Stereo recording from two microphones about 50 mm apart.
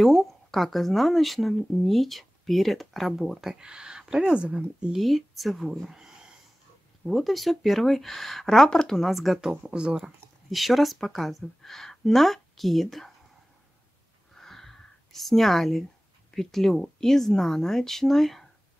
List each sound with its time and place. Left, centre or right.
0.0 s speech: centre
4.9 s speech: centre
5.9 s a sound: centre
7.1 s speech: centre
9.1 s speech: centre
9.5 s speech: centre
10.5 s speech: centre
14.3 s a sound: centre
16.3 s speech: centre